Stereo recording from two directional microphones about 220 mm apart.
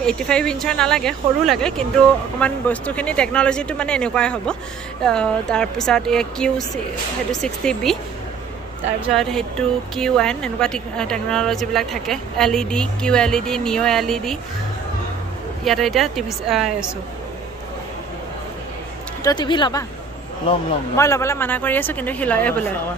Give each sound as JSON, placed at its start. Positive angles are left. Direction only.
{"t": 0.0, "sound": "speech", "side_deg": 5}
{"t": 9.0, "sound": "speech", "side_deg": 0}
{"t": 15.6, "sound": "speech", "side_deg": 0}
{"t": 19.2, "sound": "speech", "side_deg": 20}
{"t": 20.9, "sound": "speech", "side_deg": 15}